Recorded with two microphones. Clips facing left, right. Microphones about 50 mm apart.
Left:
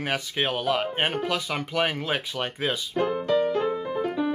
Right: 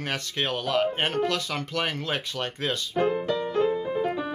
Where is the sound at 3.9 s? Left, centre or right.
Centre.